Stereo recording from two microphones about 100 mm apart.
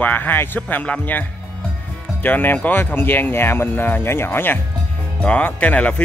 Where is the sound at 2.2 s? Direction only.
20° left (ahead or behind).